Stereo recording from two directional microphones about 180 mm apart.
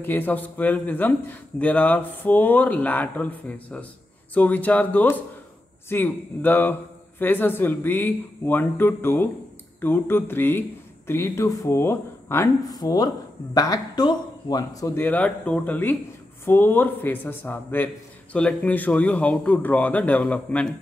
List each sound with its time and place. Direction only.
0.0 s a man's voice: 10° left (ahead or behind)